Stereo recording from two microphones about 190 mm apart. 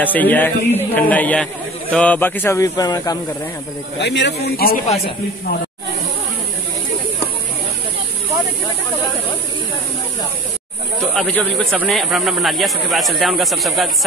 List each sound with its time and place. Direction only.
0.0 s speech: 10° left (ahead or behind)
4.0 s speech: 65° left (ahead or behind)
4.6 s a man's voice: 50° left (ahead or behind)
4.8 s a man's voice: 30° left (ahead or behind)
11.1 s speech: 5° left (ahead or behind)